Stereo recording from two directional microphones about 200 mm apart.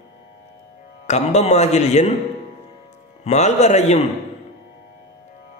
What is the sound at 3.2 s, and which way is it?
Speech, 35° left (ahead or behind).